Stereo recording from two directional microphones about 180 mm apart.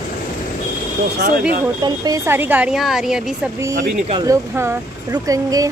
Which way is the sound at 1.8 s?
20° right (ahead or behind).